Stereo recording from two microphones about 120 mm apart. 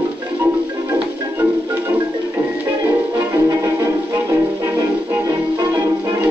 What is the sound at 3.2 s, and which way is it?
Music, 20° right (ahead or behind).